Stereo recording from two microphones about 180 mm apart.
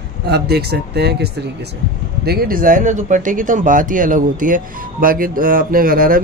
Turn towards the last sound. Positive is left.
turn(degrees=-50)  # may be behind; listen again after turning